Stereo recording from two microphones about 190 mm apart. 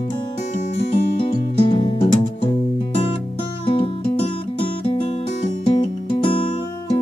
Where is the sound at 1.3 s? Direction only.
30° left (ahead or behind).